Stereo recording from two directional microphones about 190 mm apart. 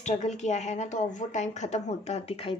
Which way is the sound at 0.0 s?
35° left (ahead or behind).